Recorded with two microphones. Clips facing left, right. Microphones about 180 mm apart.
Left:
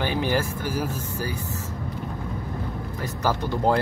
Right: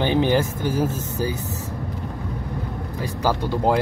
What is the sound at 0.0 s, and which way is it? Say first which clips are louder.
Speech: right 5 dB; 20° right (ahead or behind).